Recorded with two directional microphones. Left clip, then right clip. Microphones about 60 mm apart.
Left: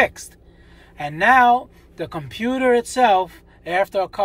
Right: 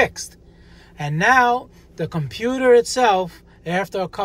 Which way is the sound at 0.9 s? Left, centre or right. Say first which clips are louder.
Left 1 dB; right.